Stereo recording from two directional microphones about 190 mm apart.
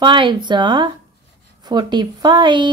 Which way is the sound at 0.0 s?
25° right (ahead or behind).